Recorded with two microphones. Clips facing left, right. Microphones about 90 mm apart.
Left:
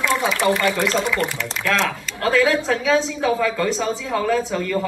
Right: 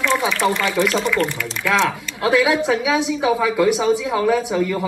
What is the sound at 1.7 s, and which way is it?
A woman's voice, 10° right (ahead or behind).